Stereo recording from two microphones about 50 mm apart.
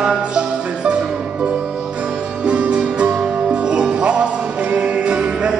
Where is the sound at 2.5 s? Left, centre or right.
Right.